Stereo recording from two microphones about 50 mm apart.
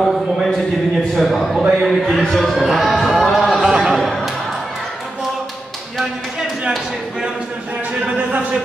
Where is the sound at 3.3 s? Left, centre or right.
Centre.